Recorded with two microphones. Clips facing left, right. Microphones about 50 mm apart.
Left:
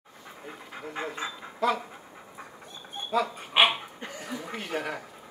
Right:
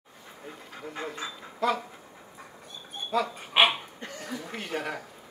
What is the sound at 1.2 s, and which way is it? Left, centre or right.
Speech, left.